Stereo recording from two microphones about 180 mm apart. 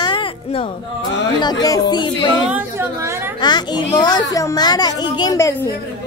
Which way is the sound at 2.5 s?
10° right (ahead or behind).